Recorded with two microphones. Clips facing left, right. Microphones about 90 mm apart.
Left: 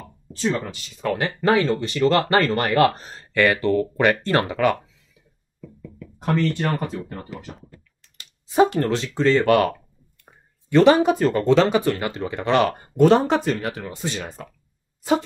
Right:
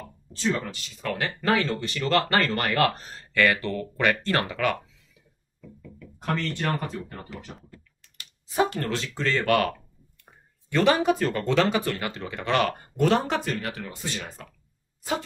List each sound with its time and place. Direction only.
0.5 s speech: 20° left (ahead or behind)
5.8 s speech: 15° left (ahead or behind)